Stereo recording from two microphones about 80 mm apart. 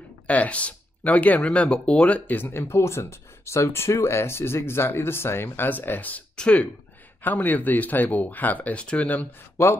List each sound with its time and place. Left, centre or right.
0.3 s speech: centre